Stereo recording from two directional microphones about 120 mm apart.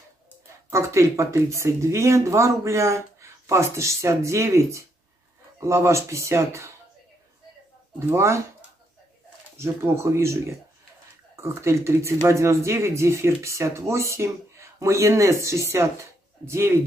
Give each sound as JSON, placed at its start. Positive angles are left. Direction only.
{"t": 0.7, "sound": "speech", "side_deg": -25}
{"t": 8.1, "sound": "speech", "side_deg": -20}
{"t": 9.6, "sound": "speech", "side_deg": -20}